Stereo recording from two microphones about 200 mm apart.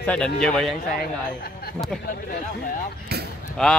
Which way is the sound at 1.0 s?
50° left (ahead or behind).